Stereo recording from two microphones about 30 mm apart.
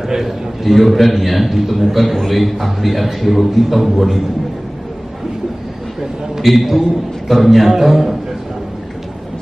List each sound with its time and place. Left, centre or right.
0.2 s a man's voice: centre
6.4 s a man's voice: centre